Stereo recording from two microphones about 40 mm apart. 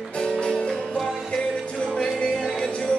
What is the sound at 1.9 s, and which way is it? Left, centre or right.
Music, centre.